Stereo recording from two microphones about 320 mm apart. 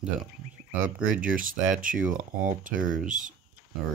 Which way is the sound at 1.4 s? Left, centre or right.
Right.